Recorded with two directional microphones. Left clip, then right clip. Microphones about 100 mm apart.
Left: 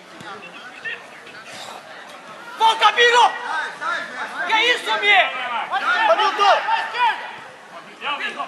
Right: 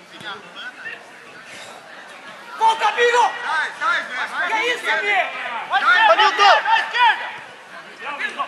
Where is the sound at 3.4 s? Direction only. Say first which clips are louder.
Right 4 dB; 15° right (ahead or behind).